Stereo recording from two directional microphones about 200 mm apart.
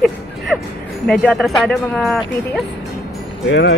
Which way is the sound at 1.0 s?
5° left (ahead or behind).